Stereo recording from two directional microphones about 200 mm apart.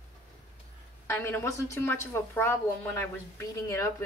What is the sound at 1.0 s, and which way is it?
A woman's voice, 15° left (ahead or behind).